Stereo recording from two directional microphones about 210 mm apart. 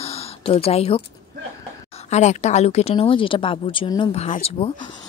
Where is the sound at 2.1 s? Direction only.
35° left (ahead or behind).